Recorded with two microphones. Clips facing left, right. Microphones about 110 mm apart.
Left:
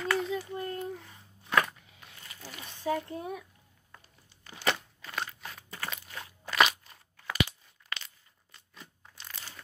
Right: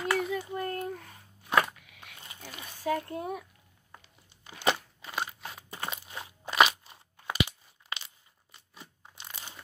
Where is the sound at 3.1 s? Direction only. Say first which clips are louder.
Right 2 dB; 45° right (ahead or behind).